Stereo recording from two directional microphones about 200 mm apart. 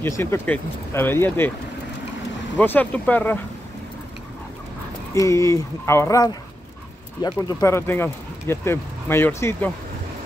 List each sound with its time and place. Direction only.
0.0 s speech: 10° left (ahead or behind)
2.6 s speech: 10° left (ahead or behind)
5.1 s speech: 15° left (ahead or behind)